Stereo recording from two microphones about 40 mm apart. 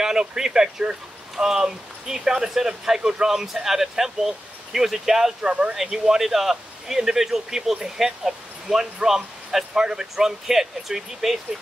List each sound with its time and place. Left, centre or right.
0.0 s a sound: centre
0.4 s speech: centre
5.5 s speech: right
5.8 s speech: centre